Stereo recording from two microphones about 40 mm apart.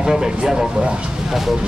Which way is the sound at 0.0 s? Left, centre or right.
Centre.